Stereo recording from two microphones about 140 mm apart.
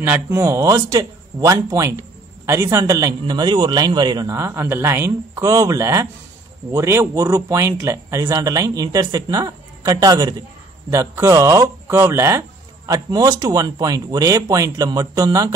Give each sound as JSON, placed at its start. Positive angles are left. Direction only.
{"t": 0.0, "sound": "speech", "side_deg": -15}